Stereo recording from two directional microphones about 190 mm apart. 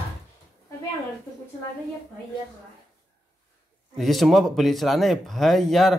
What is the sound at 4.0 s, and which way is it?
Speech, centre (ahead or behind).